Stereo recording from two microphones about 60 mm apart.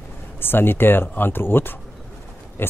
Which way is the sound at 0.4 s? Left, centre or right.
Left.